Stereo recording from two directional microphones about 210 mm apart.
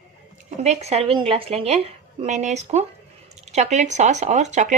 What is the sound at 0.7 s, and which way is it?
Speech, 30° right (ahead or behind).